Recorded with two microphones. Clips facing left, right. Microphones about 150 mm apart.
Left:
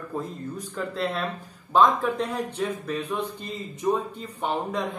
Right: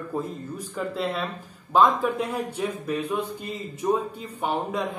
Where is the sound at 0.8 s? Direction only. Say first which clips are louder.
Right 1 dB; 5° right (ahead or behind).